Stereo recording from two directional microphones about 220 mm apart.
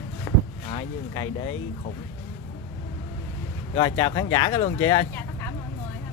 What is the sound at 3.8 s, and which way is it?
Speech, 20° left (ahead or behind).